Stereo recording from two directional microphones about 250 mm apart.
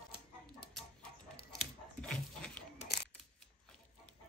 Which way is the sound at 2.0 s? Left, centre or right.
Centre.